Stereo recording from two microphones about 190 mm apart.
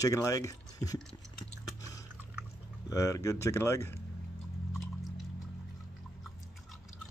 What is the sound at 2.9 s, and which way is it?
Speech, 15° left (ahead or behind).